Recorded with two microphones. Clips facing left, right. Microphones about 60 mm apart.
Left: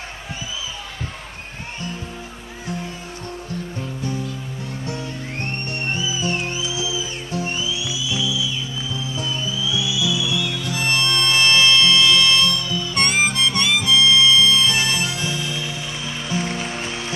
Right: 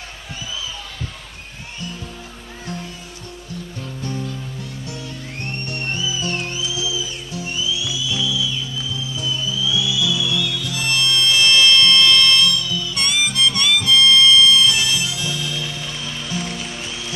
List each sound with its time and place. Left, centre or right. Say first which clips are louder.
4.0 s music: right 1 dB; centre
4.8 s music: left 3 dB; left
5.9 s music: left 1 dB; left
8.9 s music: even; left; by 12.4 s centre
12.4 s harmonica: right 1 dB; left
16.3 s music: left 4 dB; left